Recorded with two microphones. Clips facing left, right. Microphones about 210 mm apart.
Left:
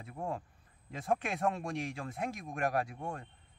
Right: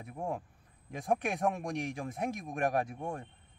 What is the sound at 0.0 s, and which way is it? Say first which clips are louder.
Speech: right 2 dB; 15° right (ahead or behind).